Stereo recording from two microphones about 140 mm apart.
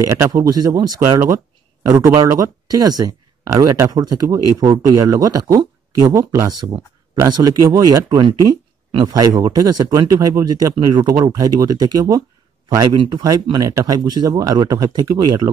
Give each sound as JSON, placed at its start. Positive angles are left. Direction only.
{"t": 0.0, "sound": "speech", "side_deg": -20}